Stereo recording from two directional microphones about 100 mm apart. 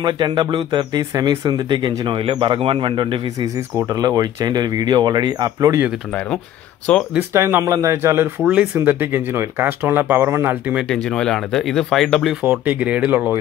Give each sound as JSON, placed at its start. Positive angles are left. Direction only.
{"t": 0.0, "sound": "speech", "side_deg": -50}
{"t": 3.3, "sound": "speech", "side_deg": -35}
{"t": 7.2, "sound": "speech", "side_deg": -20}
{"t": 8.4, "sound": "speech", "side_deg": -15}
{"t": 10.9, "sound": "speech", "side_deg": 5}
{"t": 12.4, "sound": "speech", "side_deg": -15}